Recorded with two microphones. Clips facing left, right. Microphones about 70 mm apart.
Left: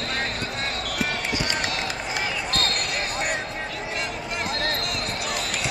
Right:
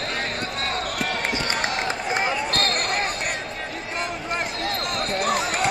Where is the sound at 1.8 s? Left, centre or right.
Right.